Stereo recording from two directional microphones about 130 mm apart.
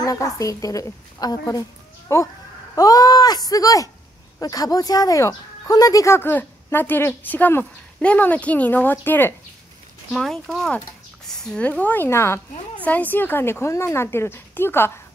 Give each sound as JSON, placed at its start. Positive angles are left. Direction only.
{"t": 0.0, "sound": "a woman's voice", "side_deg": 25}
{"t": 10.1, "sound": "speech", "side_deg": 5}